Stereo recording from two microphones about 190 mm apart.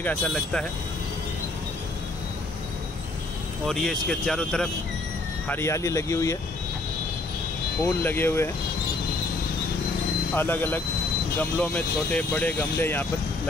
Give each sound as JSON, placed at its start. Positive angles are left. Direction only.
{"t": 0.0, "sound": "speech", "side_deg": 10}
{"t": 3.6, "sound": "speech", "side_deg": 0}
{"t": 5.5, "sound": "speech", "side_deg": 15}
{"t": 7.8, "sound": "speech", "side_deg": 10}
{"t": 10.3, "sound": "speech", "side_deg": 10}